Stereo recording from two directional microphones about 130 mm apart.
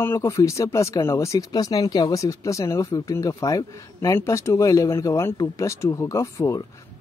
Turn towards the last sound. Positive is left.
turn(degrees=25)  # may be behind; listen again after turning